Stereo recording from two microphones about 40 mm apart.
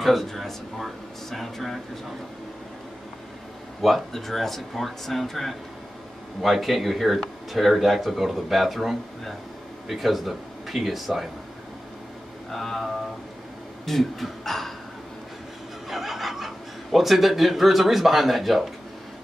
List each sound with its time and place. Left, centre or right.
0.0 s speech: centre
4.1 s speech: centre
6.4 s a man's voice: centre
12.4 s speech: centre
15.9 s speech: centre